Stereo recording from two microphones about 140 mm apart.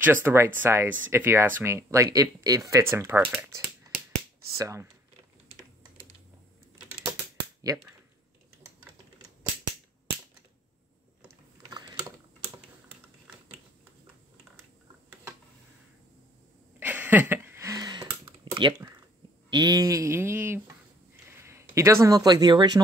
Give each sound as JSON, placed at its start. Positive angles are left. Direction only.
{"t": 0.0, "sound": "speech", "side_deg": -15}
{"t": 4.6, "sound": "speech", "side_deg": -20}
{"t": 7.6, "sound": "speech", "side_deg": -25}
{"t": 11.6, "sound": "a sound", "side_deg": -30}
{"t": 16.8, "sound": "a sound", "side_deg": -10}
{"t": 19.5, "sound": "speech", "side_deg": -30}